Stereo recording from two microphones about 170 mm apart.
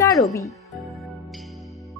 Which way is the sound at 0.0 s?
20° left (ahead or behind).